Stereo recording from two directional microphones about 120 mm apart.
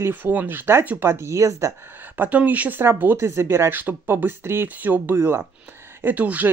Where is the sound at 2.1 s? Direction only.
15° right (ahead or behind).